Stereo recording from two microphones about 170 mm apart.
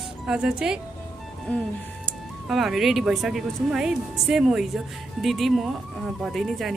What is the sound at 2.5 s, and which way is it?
Speech, centre (ahead or behind).